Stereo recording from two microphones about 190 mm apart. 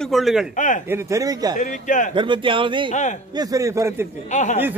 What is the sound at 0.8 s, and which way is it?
Speech, 15° right (ahead or behind).